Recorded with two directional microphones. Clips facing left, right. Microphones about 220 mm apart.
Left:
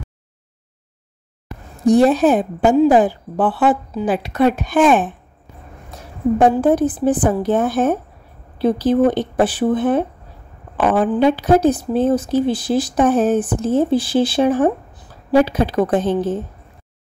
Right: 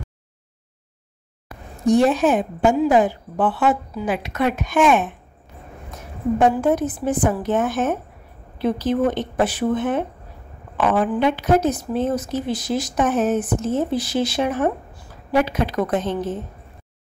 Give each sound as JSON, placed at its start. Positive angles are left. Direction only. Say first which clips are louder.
{"t": 1.9, "sound": "speech", "louder": "left 4 dB", "side_deg": 35}
{"t": 5.9, "sound": "a sound", "louder": "left 4 dB", "side_deg": 35}
{"t": 6.5, "sound": "speech", "louder": "left 5 dB", "side_deg": 35}